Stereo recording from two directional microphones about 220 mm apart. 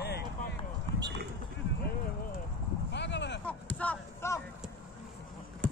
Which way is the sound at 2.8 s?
50° left (ahead or behind).